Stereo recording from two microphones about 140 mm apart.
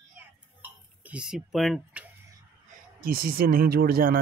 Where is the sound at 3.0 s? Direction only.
90° right.